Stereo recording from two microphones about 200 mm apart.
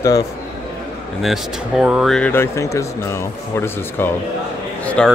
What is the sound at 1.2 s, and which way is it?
Speech, centre (ahead or behind).